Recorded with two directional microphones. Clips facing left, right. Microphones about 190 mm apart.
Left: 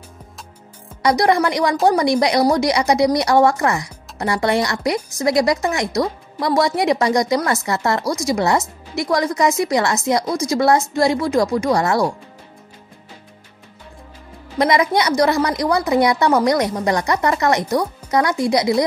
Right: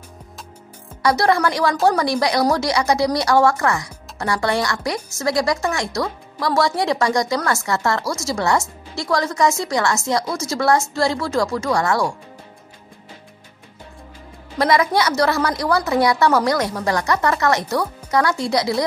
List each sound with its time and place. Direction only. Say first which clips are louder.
1.0 s a woman's voice: left 2 dB; 15° left (ahead or behind)
14.6 s a woman's voice: left 1 dB; 20° left (ahead or behind)